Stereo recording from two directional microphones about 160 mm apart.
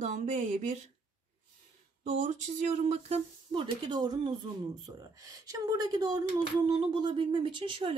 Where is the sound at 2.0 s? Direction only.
45° right (ahead or behind).